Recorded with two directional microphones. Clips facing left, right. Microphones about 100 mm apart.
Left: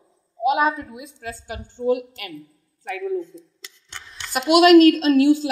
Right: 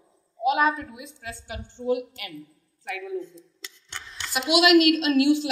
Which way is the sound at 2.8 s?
35° left (ahead or behind).